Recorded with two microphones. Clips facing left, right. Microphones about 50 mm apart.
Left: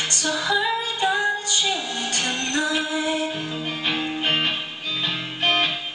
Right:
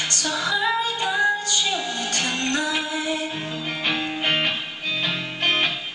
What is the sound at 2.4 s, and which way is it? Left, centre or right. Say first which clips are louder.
Music: right 1 dB; right.